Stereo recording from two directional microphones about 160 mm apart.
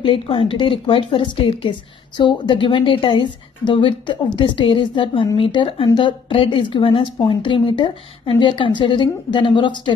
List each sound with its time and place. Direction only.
0.0 s a woman's voice: 35° left (ahead or behind)